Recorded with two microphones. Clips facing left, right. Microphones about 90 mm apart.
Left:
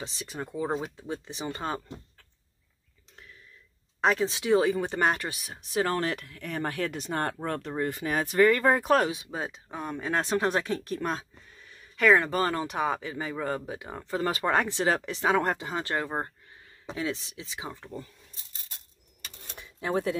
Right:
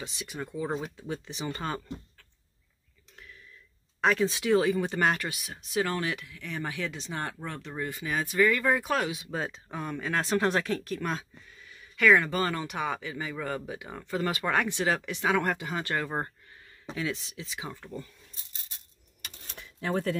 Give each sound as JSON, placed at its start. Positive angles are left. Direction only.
{"t": 0.0, "sound": "speech", "side_deg": 30}
{"t": 0.7, "sound": "speech", "side_deg": 15}
{"t": 0.9, "sound": "speech", "side_deg": 30}
{"t": 4.0, "sound": "speech", "side_deg": 25}
{"t": 9.3, "sound": "speech", "side_deg": 10}
{"t": 9.9, "sound": "speech", "side_deg": 25}
{"t": 19.5, "sound": "a sound", "side_deg": 15}